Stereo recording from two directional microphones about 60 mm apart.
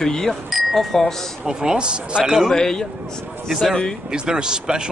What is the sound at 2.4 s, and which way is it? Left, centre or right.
Speech, centre.